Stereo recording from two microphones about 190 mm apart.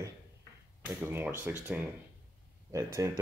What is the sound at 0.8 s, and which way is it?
Speech, 10° right (ahead or behind).